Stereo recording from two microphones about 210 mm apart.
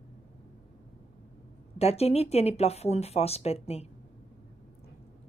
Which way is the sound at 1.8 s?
30° left (ahead or behind).